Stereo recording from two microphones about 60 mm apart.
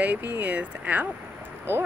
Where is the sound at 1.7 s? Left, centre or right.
Right.